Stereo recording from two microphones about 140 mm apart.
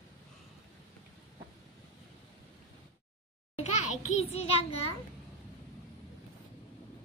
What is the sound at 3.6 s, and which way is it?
A child's voice, 55° left (ahead or behind).